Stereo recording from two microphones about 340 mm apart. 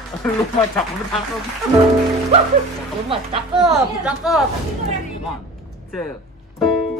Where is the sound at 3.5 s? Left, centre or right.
Centre.